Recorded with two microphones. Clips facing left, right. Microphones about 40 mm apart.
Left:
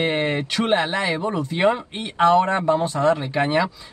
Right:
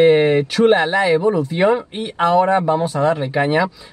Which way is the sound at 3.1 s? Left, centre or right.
Right.